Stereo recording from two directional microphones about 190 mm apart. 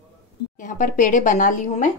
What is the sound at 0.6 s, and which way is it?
A woman's voice, 45° left (ahead or behind).